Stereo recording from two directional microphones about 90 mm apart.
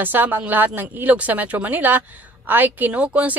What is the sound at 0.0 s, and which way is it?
Speech, 20° right (ahead or behind).